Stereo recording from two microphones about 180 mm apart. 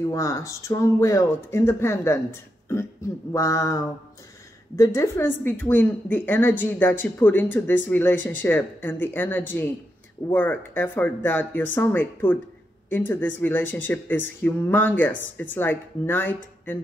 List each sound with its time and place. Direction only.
0.1 s a woman's voice: 15° left (ahead or behind)